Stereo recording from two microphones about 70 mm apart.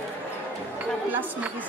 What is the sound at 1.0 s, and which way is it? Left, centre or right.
Speech, right.